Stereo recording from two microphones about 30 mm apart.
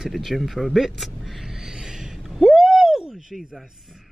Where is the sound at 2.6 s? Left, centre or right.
Centre.